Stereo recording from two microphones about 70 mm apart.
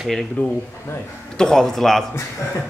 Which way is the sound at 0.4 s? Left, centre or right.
Left.